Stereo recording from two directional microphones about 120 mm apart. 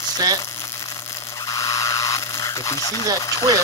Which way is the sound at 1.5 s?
30° left (ahead or behind).